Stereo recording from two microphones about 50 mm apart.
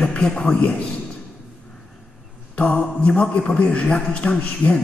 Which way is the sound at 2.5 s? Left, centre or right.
Left.